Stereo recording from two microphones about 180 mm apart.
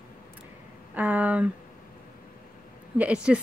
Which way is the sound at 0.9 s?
10° right (ahead or behind).